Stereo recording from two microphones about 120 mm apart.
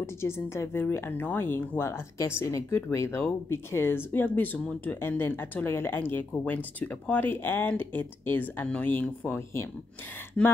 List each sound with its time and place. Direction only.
0.0 s speech: 20° left (ahead or behind)